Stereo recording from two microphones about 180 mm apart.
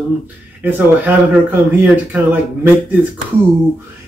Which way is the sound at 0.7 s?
10° right (ahead or behind).